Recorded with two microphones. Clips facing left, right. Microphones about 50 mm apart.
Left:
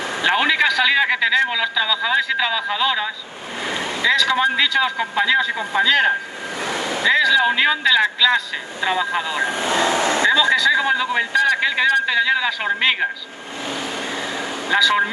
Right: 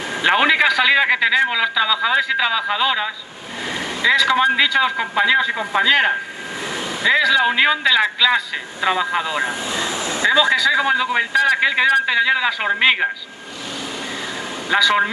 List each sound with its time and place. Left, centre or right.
0.2 s a man's voice: centre
7.1 s a man's voice: centre
9.5 s speech: left
10.7 s a man's voice: centre
14.7 s speech: centre